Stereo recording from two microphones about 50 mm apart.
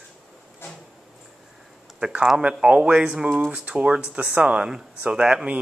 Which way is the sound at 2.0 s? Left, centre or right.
Centre.